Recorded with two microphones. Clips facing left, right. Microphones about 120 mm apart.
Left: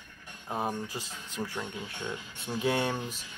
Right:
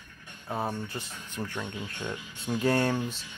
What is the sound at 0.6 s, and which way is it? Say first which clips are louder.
Speech: even; 15° left (ahead or behind).